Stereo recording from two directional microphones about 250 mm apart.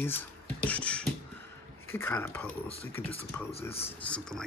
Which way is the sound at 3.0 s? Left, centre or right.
Left.